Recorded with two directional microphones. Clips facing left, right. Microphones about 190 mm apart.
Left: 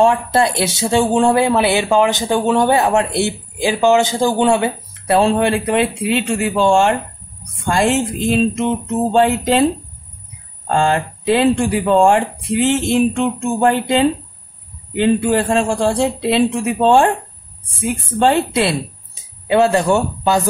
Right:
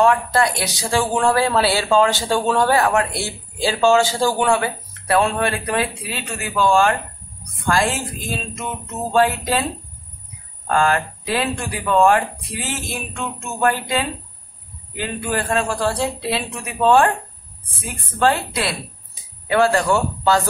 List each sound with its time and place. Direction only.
0.0 s speech: 25° left (ahead or behind)
10.7 s speech: 25° left (ahead or behind)